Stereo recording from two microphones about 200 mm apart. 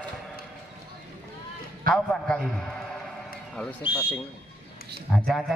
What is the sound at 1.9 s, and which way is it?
Speech, 5° left (ahead or behind).